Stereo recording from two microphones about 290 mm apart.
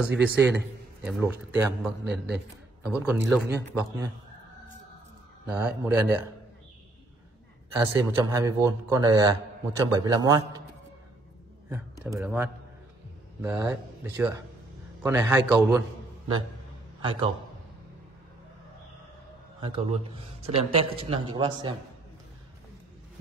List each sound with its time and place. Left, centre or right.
0.0 s a man's voice: centre
5.5 s a man's voice: centre
7.7 s a man's voice: centre
12.0 s a man's voice: centre
17.0 s a man's voice: centre
19.6 s a man's voice: centre